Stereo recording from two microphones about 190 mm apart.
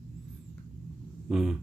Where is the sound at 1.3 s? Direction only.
Centre (ahead or behind).